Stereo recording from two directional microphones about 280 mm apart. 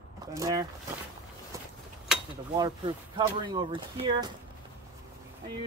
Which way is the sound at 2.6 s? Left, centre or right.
Centre.